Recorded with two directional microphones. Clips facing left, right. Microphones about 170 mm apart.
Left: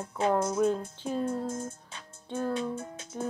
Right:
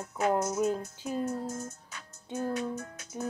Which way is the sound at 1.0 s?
30° left (ahead or behind).